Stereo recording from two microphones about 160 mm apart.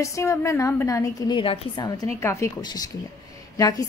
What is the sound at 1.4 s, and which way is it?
A woman's voice, 30° left (ahead or behind).